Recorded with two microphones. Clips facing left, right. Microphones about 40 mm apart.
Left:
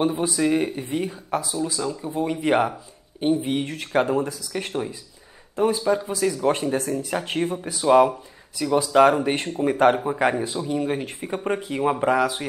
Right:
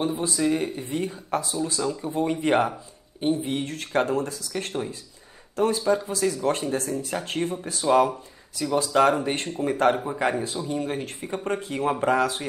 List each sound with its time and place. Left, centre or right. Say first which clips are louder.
0.0 s speech: left 3 dB; centre
6.3 s speech: left 3 dB; left